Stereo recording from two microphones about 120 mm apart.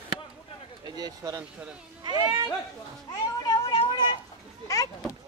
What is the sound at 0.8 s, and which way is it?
Speech, 35° right (ahead or behind).